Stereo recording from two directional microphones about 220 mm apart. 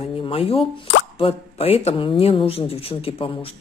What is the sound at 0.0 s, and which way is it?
Speech, 25° left (ahead or behind).